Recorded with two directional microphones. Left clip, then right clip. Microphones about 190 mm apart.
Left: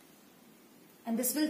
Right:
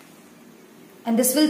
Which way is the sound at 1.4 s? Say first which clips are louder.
Right 12 dB; 10° right (ahead or behind).